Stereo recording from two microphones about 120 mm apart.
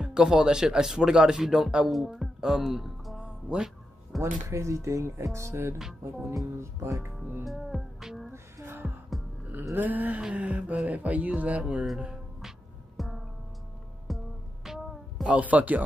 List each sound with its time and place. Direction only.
0.0 s speech: 5° right (ahead or behind)
4.5 s speech: 25° right (ahead or behind)
7.4 s music: centre (ahead or behind)
8.3 s music: 20° right (ahead or behind)
9.5 s a sound: 15° right (ahead or behind); by 13.2 s centre (ahead or behind)
14.0 s music: centre (ahead or behind)
15.2 s speech: 10° right (ahead or behind)